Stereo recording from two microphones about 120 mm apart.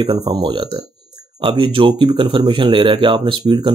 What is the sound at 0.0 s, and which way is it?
Speech, 40° right (ahead or behind).